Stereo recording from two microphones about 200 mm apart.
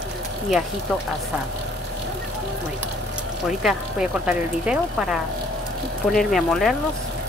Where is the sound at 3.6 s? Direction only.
5° right (ahead or behind).